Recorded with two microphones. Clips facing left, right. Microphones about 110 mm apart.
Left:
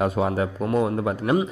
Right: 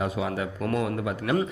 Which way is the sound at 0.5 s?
25° left (ahead or behind).